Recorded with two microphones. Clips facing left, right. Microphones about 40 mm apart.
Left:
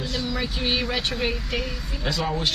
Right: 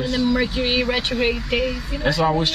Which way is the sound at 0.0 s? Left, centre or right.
Centre.